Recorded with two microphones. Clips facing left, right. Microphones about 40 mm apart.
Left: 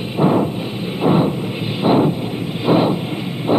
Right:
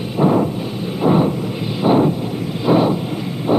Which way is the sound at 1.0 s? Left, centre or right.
Left.